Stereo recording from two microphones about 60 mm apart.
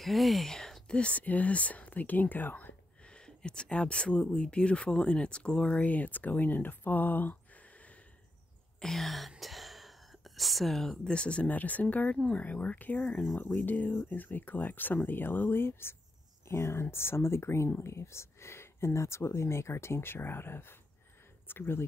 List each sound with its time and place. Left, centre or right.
0.0 s a sound: centre
0.9 s speech: left
3.1 s speech: centre; by 7.3 s left
8.7 s speech: centre; by 21.8 s left